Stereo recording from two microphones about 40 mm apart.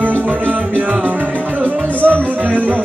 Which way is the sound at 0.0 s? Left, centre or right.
Right.